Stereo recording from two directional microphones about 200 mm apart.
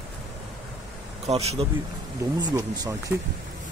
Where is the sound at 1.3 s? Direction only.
30° right (ahead or behind).